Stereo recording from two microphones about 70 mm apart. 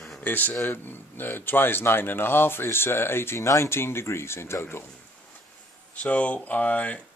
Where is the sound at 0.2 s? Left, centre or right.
Left.